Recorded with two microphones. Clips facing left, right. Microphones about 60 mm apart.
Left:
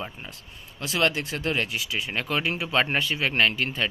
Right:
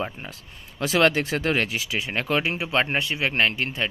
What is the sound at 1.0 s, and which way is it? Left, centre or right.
Speech, right.